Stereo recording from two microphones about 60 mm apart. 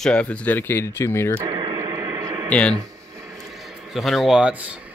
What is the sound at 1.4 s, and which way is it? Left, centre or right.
Radio, right.